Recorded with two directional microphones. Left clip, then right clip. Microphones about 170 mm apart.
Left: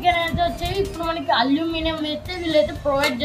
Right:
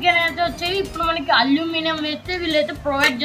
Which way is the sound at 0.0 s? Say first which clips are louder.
Right 2 dB; 5° left (ahead or behind).